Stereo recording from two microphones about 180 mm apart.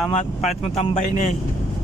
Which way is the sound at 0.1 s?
40° left (ahead or behind).